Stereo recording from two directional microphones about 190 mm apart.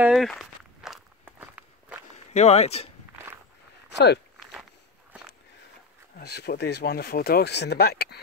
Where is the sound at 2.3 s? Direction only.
35° left (ahead or behind).